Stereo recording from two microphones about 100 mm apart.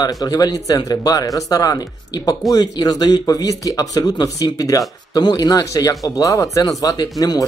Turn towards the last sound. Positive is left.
turn(degrees=40)  # may be behind; listen again after turning